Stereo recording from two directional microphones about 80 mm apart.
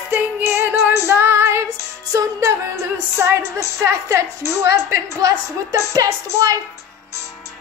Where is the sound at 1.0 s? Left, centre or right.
Right.